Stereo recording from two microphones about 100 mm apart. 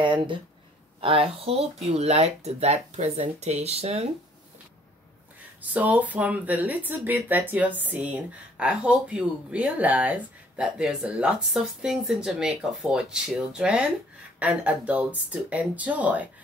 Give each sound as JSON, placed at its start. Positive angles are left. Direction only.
{"t": 0.0, "sound": "speech", "side_deg": -55}
{"t": 1.0, "sound": "a woman's voice", "side_deg": -65}
{"t": 5.6, "sound": "speech", "side_deg": -15}